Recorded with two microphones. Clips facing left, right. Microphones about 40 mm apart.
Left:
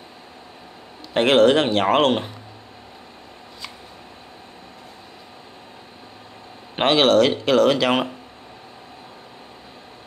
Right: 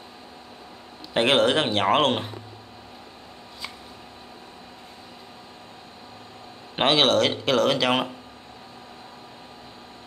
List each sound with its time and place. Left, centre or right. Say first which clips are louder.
1.1 s speech: left 5 dB; centre
6.8 s speech: left 4 dB; centre